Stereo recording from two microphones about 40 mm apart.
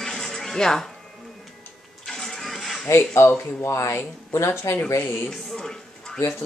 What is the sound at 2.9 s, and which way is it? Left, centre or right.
Speech, left.